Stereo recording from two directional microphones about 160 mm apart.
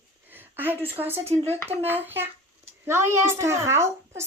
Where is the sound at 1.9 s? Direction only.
15° right (ahead or behind).